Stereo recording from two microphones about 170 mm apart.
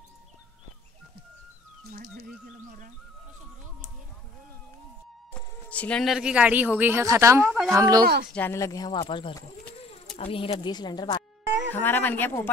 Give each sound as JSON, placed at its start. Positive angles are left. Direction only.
{"t": 1.9, "sound": "music", "side_deg": -65}
{"t": 5.3, "sound": "speech", "side_deg": 5}
{"t": 7.4, "sound": "speech", "side_deg": -5}
{"t": 7.7, "sound": "speech", "side_deg": -20}
{"t": 8.0, "sound": "speech", "side_deg": -55}
{"t": 8.4, "sound": "speech", "side_deg": 15}
{"t": 8.9, "sound": "speech", "side_deg": 30}
{"t": 11.7, "sound": "speech", "side_deg": 10}